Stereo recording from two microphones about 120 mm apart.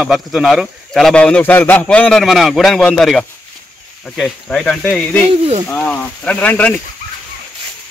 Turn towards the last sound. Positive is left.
turn(degrees=10)  # may be behind; listen again after turning